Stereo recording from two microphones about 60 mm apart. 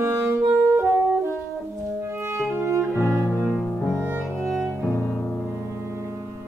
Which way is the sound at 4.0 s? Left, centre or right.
Right.